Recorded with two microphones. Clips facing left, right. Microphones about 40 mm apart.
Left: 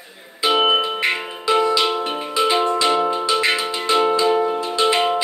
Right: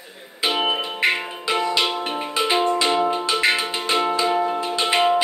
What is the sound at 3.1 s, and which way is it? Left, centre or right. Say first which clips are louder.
Music: left 1 dB; centre.